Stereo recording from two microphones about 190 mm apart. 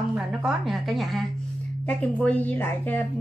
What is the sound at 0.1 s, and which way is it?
A woman's voice, 5° right (ahead or behind).